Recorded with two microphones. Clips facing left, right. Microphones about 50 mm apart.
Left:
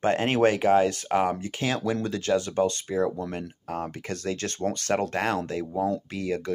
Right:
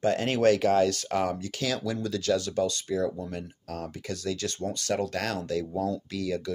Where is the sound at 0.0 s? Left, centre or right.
Left.